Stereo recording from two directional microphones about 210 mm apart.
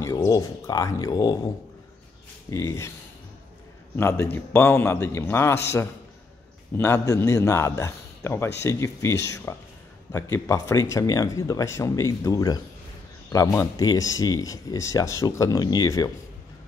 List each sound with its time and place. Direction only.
0.0 s speech: 15° left (ahead or behind)
2.5 s speech: 15° left (ahead or behind)
3.9 s speech: 10° left (ahead or behind)
6.8 s speech: 10° left (ahead or behind)